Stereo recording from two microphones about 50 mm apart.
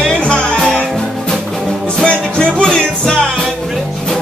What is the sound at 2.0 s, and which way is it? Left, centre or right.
Music, centre.